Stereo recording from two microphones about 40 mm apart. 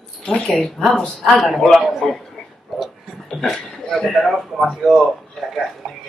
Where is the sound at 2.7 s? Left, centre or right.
Centre.